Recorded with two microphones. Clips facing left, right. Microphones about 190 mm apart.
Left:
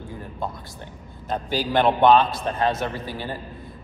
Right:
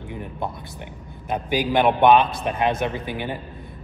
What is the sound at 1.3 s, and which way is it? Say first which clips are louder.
A man's voice: right 2 dB; 15° right (ahead or behind).